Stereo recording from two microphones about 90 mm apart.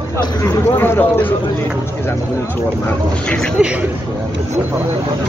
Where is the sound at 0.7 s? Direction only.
25° left (ahead or behind).